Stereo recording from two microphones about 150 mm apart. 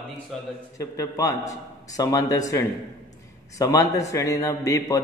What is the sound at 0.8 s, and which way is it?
A man's voice, 20° left (ahead or behind).